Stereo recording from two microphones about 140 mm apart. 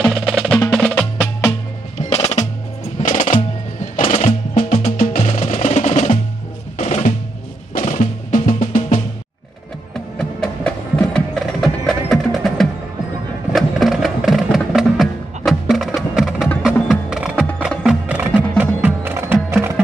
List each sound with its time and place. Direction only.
0.0 s percussion: 5° left (ahead or behind)
0.7 s music: 5° left (ahead or behind)
2.0 s music: 50° left (ahead or behind)
3.0 s music: 70° left (ahead or behind)
4.0 s music: 45° left (ahead or behind)
4.9 s music: 70° left (ahead or behind)
5.4 s music: 50° left (ahead or behind)
6.8 s drum: 55° left (ahead or behind)
7.8 s music: 70° left (ahead or behind)
9.9 s wood block: 5° left (ahead or behind)
13.5 s music: centre (ahead or behind)
15.7 s wood block: centre (ahead or behind)
17.6 s music: 10° right (ahead or behind)